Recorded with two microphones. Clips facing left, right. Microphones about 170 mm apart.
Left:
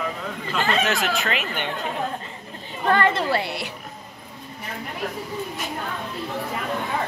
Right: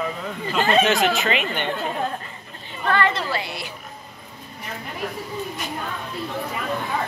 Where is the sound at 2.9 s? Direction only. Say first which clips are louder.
Left 1 dB; 45° left (ahead or behind).